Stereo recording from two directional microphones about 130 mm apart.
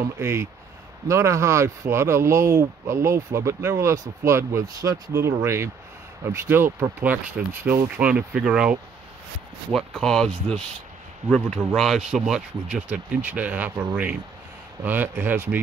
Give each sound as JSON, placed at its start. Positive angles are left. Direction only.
{"t": 0.2, "sound": "speech", "side_deg": -20}